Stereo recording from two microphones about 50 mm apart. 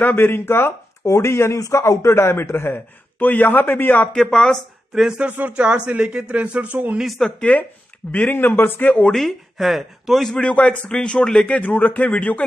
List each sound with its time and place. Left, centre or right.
0.0 s speech: left
1.0 s a man's voice: left
3.2 s speech: left
4.1 s speech: centre
4.9 s speech: centre
5.2 s speech: right
7.2 s speech: centre
8.1 s speech: left
9.6 s speech: centre
10.2 s speech: left
10.9 s speech: centre
11.4 s speech: left